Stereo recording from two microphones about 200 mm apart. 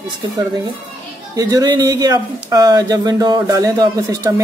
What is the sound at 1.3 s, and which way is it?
Speech, 20° right (ahead or behind).